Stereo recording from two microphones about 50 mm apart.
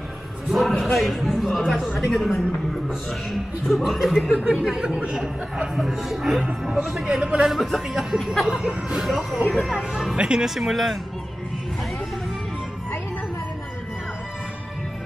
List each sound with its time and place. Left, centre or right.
0.5 s a sound: centre
0.9 s speech: centre
4.4 s speech: centre
5.8 s speech: centre
10.1 s speech: centre
10.5 s speech: centre